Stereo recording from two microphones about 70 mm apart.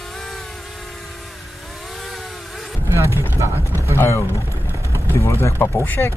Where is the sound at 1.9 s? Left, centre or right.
Centre.